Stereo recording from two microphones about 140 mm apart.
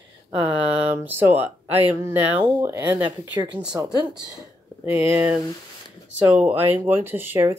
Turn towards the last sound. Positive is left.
turn(degrees=-15)  # may be behind; listen again after turning